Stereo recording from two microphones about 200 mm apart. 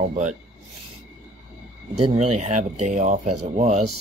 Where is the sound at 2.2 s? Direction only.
35° right (ahead or behind).